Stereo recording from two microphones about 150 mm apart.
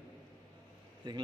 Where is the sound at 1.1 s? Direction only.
30° right (ahead or behind).